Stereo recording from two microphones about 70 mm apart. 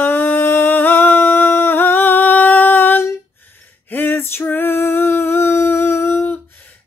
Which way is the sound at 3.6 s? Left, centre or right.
Left.